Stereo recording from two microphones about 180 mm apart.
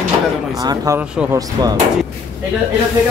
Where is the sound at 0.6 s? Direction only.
20° right (ahead or behind).